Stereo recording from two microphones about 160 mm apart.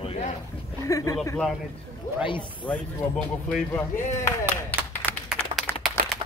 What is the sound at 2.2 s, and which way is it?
Speech, 30° left (ahead or behind).